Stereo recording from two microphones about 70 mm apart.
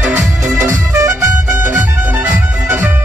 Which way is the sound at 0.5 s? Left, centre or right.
Right.